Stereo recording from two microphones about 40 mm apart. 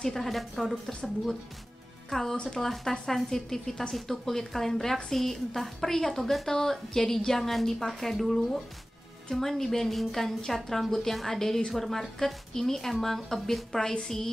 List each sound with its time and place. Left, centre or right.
0.0 s speech: centre
2.0 s speech: centre
2.3 s speech: left
2.6 s a woman's voice: centre